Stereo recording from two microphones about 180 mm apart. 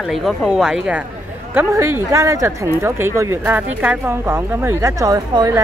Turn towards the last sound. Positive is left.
turn(degrees=-20)  # may be behind; listen again after turning